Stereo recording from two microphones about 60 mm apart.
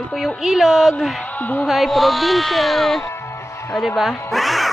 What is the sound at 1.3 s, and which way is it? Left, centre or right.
Speech, left.